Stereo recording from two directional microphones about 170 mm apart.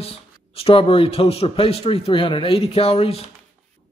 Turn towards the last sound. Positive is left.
turn(degrees=35)  # may be behind; listen again after turning